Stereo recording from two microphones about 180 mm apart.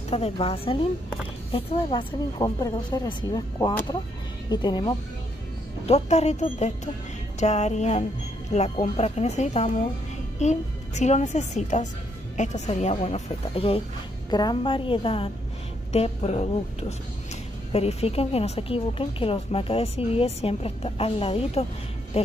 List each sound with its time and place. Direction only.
0.1 s a woman's voice: 30° left (ahead or behind)
5.9 s a woman's voice: 35° left (ahead or behind)
17.7 s a woman's voice: 35° left (ahead or behind)